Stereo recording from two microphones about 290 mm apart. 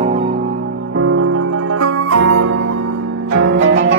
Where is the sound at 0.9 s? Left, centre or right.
Right.